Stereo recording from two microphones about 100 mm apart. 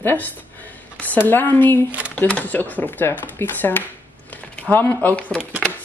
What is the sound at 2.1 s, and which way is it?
Speech, 15° left (ahead or behind).